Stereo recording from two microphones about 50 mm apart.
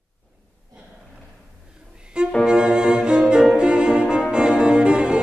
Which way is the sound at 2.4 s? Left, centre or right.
Centre.